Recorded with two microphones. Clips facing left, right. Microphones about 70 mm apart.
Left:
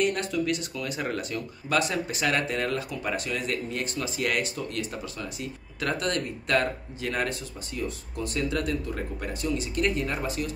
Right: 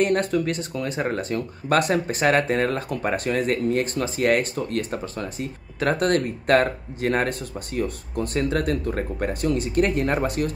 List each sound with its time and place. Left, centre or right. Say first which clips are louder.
0.0 s speech: right 5 dB; right